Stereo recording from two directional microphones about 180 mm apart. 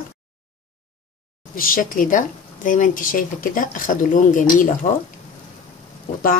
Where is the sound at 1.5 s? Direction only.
50° left (ahead or behind).